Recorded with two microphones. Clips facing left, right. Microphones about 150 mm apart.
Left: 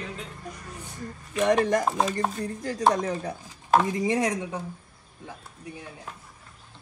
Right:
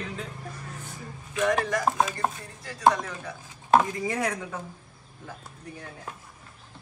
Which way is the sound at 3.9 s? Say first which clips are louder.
Left 4 dB; 20° left (ahead or behind).